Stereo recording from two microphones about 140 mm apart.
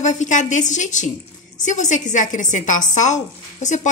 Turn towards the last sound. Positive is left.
turn(degrees=60)  # may be behind; listen again after turning